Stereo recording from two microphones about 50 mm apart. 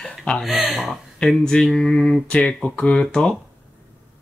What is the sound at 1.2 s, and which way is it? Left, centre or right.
Speech, centre.